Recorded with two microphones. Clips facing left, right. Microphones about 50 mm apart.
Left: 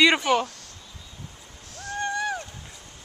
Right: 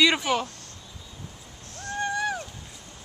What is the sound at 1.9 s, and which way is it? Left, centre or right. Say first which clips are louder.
Boat: even; centre.